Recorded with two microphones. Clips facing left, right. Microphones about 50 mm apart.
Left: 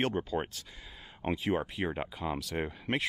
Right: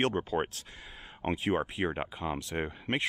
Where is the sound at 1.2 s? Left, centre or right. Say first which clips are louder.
Right 1 dB; centre.